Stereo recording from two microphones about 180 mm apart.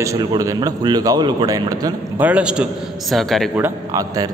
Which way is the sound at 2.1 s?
5° right (ahead or behind).